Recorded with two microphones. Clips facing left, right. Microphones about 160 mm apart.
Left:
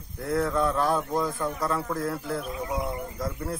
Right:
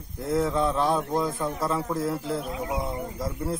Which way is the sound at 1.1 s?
Centre (ahead or behind).